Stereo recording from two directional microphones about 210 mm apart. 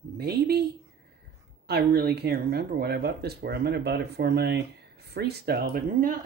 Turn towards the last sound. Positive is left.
turn(degrees=-45)  # may be behind; listen again after turning